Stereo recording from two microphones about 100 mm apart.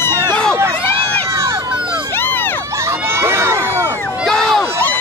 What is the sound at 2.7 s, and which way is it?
Crowd, 25° right (ahead or behind).